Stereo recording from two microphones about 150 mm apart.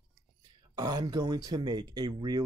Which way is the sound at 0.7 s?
25° right (ahead or behind).